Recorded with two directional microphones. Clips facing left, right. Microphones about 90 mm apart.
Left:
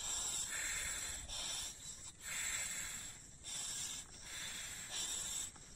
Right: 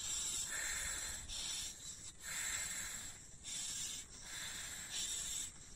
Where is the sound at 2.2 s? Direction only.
20° right (ahead or behind).